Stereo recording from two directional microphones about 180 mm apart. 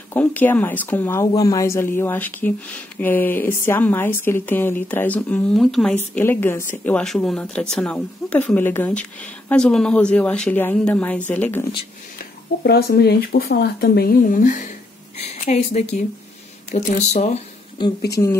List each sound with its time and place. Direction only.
0.1 s a woman's voice: 10° left (ahead or behind)
5.9 s a woman's voice: 10° left (ahead or behind)
12.6 s a woman's voice: 65° left (ahead or behind); by 17.4 s 40° left (ahead or behind)
18.2 s speech: 25° left (ahead or behind)